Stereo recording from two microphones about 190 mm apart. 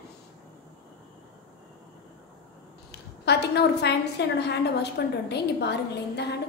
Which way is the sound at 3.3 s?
60° left (ahead or behind).